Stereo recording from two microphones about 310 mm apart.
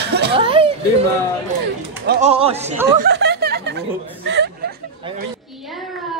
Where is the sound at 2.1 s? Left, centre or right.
Right.